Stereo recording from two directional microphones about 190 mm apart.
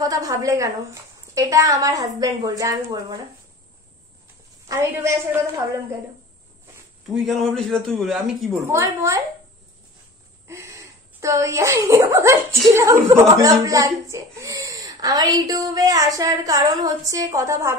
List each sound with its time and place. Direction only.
0.0 s a woman's voice: 20° right (ahead or behind)
4.6 s a woman's voice: 15° right (ahead or behind)
7.2 s a man's voice: centre (ahead or behind)
8.6 s a woman's voice: 15° right (ahead or behind)
10.5 s speech: 15° right (ahead or behind)